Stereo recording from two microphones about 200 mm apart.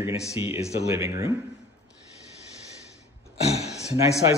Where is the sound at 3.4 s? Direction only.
30° left (ahead or behind).